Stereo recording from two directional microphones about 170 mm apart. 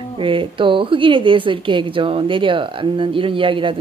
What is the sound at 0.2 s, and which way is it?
A woman's voice, 30° right (ahead or behind).